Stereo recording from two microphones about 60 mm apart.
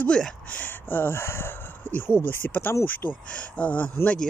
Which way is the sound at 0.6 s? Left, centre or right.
Left.